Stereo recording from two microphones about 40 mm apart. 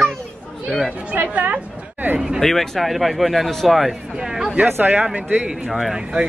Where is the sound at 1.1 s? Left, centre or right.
Right.